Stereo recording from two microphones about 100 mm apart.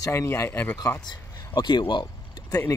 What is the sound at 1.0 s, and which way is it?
A man's voice, 50° left (ahead or behind).